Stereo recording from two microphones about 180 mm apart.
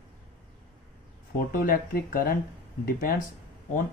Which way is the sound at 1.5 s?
55° left (ahead or behind).